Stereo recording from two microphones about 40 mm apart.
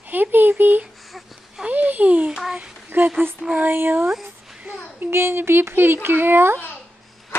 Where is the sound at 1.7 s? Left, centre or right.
Right.